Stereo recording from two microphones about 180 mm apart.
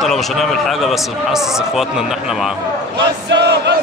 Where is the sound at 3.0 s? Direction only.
75° right (ahead or behind).